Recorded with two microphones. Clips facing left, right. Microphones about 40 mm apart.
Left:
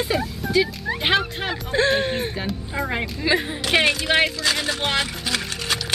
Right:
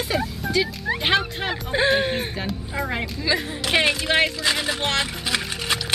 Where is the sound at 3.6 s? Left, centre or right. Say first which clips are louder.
Right 1 dB; centre.